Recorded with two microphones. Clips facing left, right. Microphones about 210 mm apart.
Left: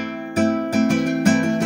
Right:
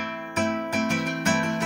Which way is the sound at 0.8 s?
40° left (ahead or behind).